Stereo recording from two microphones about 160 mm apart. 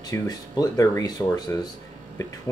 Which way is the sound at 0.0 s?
20° left (ahead or behind).